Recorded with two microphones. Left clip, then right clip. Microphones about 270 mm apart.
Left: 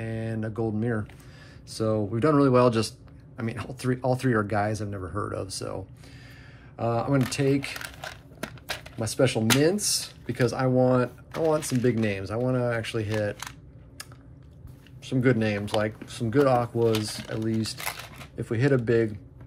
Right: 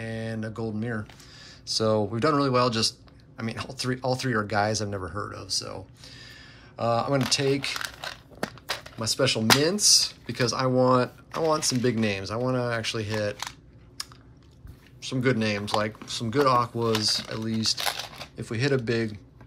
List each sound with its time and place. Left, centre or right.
0.0 s a sound: centre
1.8 s a man's voice: centre
8.9 s a man's voice: centre
14.0 s chewing: centre
15.0 s a man's voice: centre
17.7 s shuffling cards: right
18.3 s a man's voice: centre